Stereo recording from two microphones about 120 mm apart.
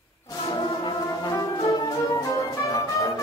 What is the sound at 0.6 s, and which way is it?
Music, 35° left (ahead or behind).